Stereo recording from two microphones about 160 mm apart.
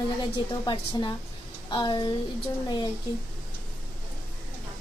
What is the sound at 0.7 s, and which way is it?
A woman's voice, 30° left (ahead or behind).